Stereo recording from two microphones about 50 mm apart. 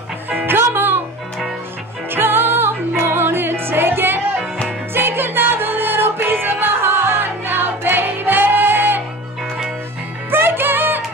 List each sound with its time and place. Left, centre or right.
0.3 s music: right
2.0 s music: right
10.3 s music: right